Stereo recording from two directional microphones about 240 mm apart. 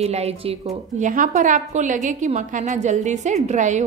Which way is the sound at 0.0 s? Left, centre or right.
Right.